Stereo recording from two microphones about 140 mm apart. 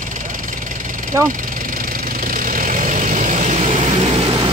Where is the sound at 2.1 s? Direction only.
75° right (ahead or behind); by 4.5 s 40° right (ahead or behind).